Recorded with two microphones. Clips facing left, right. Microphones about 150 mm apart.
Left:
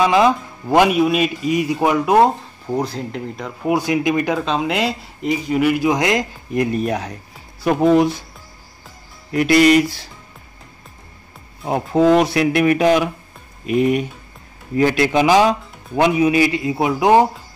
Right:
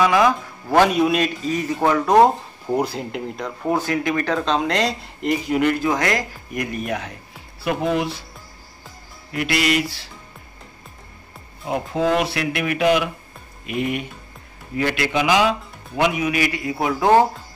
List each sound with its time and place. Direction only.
0.0 s a man's voice: 20° left (ahead or behind)
0.9 s speech: 5° left (ahead or behind)
2.1 s speech: 5° right (ahead or behind)
3.6 s speech: 15° left (ahead or behind); by 7.2 s 35° left (ahead or behind)
7.6 s music: 45° left (ahead or behind)
9.3 s music: 45° left (ahead or behind)
11.6 s a man's voice: 40° left (ahead or behind); by 17.3 s 15° left (ahead or behind)